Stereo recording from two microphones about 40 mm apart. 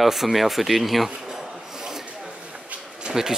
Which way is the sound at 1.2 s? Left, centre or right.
Centre.